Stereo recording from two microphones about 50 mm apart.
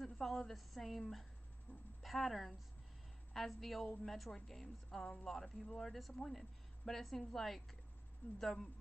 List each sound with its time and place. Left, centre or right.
0.0 s a woman's voice: centre
1.7 s speech: left
2.0 s a woman's voice: centre